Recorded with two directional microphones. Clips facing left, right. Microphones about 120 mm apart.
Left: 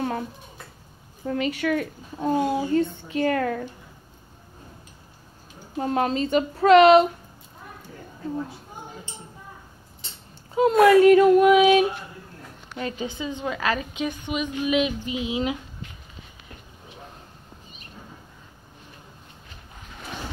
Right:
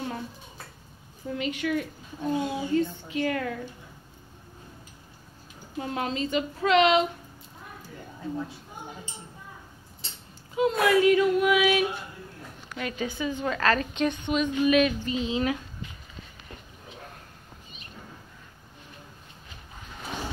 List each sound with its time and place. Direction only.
1.2 s speech: 65° left (ahead or behind)
2.1 s a woman's voice: 45° left (ahead or behind)
2.8 s a woman's voice: 25° left (ahead or behind)
3.3 s a woman's voice: 50° left (ahead or behind)
5.8 s a woman's voice: 45° left (ahead or behind)
10.5 s a woman's voice: 45° left (ahead or behind)
11.5 s female singing: 30° left (ahead or behind)
12.7 s a woman's voice: 25° left (ahead or behind)